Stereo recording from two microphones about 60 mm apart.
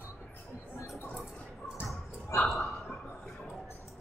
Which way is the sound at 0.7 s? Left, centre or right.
Left.